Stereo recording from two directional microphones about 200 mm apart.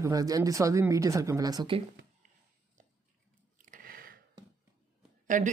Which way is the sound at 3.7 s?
45° right (ahead or behind).